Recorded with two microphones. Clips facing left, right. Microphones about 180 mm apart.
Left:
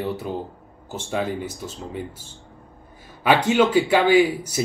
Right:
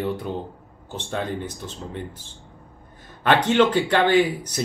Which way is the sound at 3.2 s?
10° left (ahead or behind).